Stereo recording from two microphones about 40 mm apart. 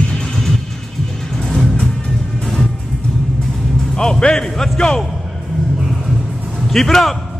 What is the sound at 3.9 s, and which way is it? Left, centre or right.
Music, centre.